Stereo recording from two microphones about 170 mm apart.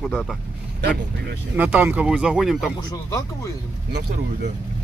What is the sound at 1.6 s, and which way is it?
Speech, 10° right (ahead or behind).